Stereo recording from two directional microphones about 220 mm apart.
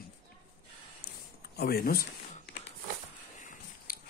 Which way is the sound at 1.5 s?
45° left (ahead or behind).